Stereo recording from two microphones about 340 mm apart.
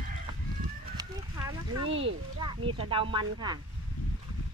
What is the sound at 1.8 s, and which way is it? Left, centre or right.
Speech, centre.